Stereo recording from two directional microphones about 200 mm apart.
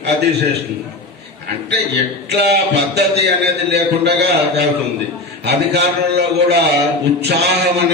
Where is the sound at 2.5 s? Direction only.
55° right (ahead or behind).